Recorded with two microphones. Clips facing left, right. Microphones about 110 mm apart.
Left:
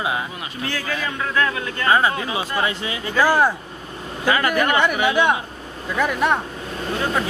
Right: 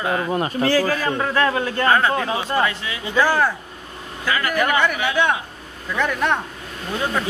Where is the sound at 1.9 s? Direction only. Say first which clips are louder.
Left 1 dB; 10° left (ahead or behind).